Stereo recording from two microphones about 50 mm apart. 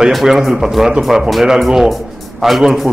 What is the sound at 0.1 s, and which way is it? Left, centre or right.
A man's voice, centre.